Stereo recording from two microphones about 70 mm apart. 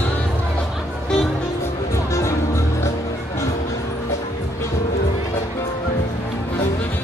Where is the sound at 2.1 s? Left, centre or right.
Left.